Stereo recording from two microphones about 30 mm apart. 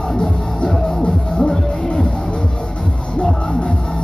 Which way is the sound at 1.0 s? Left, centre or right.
Left.